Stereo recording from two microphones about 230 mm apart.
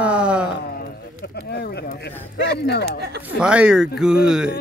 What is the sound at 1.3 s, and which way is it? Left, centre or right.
Speech, left.